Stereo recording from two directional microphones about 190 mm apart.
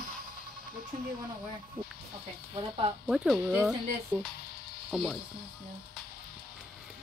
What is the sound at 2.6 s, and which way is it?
Speech, 25° right (ahead or behind).